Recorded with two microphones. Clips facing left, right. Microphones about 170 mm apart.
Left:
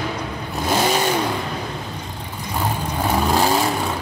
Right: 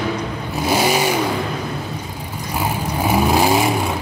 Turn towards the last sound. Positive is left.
turn(degrees=-10)  # may be behind; listen again after turning